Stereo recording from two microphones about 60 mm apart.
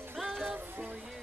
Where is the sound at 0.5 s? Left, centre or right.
Right.